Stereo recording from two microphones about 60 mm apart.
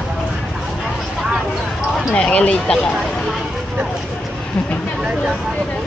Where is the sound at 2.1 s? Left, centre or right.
Centre.